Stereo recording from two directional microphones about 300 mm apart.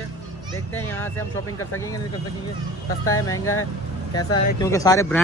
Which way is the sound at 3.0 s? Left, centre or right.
Centre.